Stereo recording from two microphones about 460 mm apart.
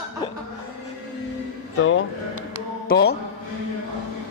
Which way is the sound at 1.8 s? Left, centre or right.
Left.